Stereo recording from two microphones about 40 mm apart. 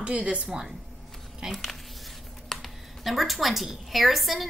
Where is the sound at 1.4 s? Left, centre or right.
Centre.